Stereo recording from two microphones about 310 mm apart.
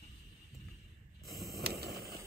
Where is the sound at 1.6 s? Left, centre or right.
Right.